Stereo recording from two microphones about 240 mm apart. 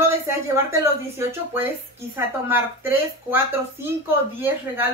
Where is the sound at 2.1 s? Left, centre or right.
Centre.